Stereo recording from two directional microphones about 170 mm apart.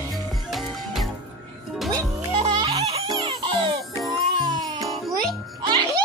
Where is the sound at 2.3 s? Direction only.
40° right (ahead or behind); by 4.8 s 25° right (ahead or behind).